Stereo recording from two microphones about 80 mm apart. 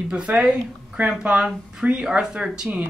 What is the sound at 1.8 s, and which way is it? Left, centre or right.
Speech, centre.